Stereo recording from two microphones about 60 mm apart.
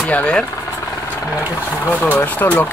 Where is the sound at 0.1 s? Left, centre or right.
Centre.